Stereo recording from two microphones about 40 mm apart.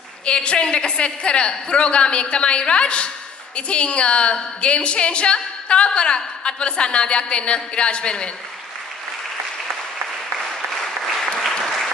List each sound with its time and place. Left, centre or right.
0.2 s a woman's voice: left
10.5 s applause: centre